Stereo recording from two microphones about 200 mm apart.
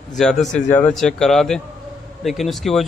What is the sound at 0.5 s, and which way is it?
Speech, 35° left (ahead or behind).